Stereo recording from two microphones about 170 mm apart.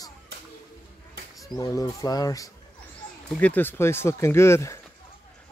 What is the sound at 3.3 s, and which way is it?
Speech, 10° left (ahead or behind).